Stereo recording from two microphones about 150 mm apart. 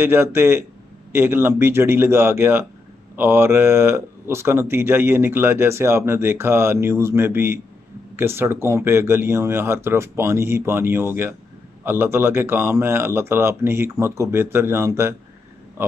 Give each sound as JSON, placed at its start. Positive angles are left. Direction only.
{"t": 0.0, "sound": "speech", "side_deg": -15}